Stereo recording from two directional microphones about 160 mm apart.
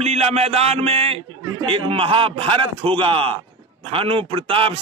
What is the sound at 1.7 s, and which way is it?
A man's voice, 35° right (ahead or behind).